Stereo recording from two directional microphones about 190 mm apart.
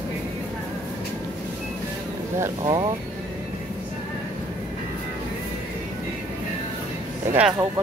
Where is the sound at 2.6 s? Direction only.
25° right (ahead or behind).